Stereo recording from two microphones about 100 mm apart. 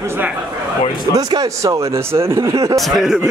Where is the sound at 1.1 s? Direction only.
40° right (ahead or behind).